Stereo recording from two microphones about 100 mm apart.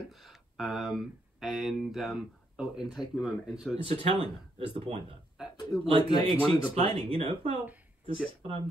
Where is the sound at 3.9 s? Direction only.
80° right.